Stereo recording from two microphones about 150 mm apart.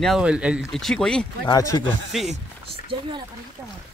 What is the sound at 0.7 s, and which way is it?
Speech, 5° left (ahead or behind).